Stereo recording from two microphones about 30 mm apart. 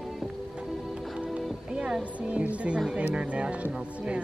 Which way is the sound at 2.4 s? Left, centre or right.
Right.